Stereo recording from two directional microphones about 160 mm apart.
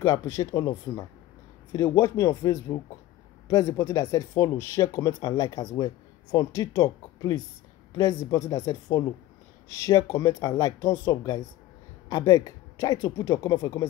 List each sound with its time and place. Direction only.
0.0 s speech: 20° left (ahead or behind)